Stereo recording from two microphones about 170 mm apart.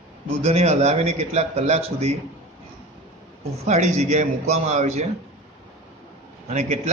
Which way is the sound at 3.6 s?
40° right (ahead or behind).